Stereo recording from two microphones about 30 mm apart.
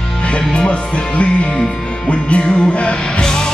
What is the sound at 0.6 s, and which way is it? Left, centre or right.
Speech, left.